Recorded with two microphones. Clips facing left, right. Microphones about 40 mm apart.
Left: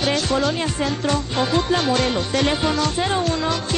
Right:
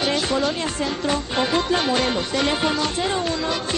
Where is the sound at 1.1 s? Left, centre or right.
Centre.